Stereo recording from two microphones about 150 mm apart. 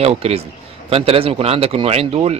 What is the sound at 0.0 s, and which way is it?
A man's voice, 45° right (ahead or behind).